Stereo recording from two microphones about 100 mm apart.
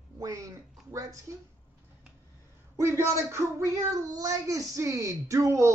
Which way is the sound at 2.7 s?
30° right (ahead or behind).